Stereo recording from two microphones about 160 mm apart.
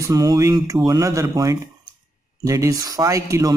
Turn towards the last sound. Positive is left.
turn(degrees=-20)  # may be behind; listen again after turning